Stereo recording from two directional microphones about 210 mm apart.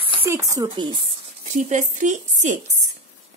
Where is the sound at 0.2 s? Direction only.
15° right (ahead or behind).